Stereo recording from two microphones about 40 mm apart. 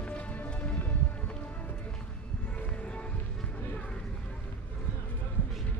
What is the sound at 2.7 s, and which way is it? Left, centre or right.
Music, left.